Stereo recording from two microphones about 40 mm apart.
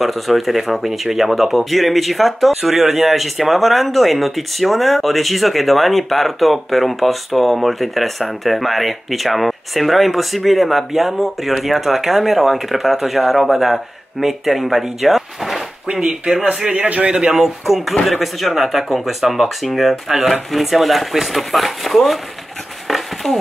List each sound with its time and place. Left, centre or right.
0.0 s speech: centre
15.9 s a man's voice: right
17.4 s speech: centre
22.8 s a sound: centre